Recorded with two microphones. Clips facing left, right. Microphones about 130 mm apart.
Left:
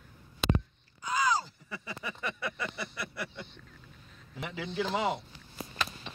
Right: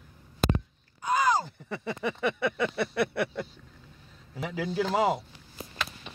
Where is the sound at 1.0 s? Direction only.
55° right (ahead or behind).